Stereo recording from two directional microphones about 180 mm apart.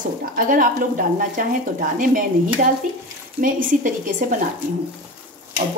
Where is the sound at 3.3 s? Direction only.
50° right (ahead or behind).